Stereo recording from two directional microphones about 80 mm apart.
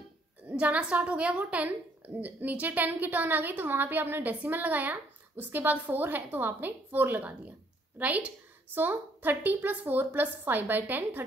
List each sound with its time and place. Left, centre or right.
0.5 s a woman's voice: centre